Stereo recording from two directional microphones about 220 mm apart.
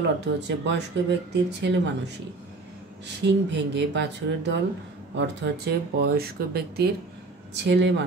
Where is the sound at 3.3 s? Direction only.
55° right (ahead or behind).